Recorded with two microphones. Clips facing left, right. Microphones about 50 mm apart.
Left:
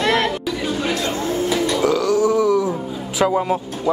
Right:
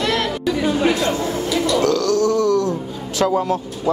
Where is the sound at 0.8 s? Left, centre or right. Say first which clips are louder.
Right 4 dB; centre.